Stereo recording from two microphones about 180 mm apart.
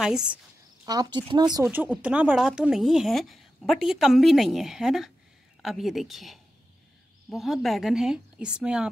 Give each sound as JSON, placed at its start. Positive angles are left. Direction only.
{"t": 0.0, "sound": "a woman's voice", "side_deg": -5}
{"t": 0.8, "sound": "speech", "side_deg": -25}
{"t": 2.0, "sound": "a woman's voice", "side_deg": -5}